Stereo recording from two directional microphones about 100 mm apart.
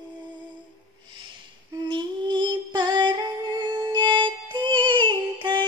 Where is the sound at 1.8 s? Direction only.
50° right (ahead or behind).